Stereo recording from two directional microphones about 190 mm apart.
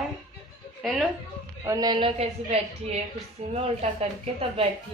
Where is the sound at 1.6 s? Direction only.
20° right (ahead or behind); by 4.0 s 35° right (ahead or behind).